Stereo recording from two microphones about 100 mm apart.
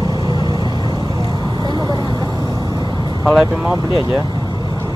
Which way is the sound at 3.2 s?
Centre (ahead or behind).